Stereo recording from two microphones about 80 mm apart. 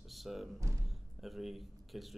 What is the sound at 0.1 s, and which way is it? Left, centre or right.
Speech, centre.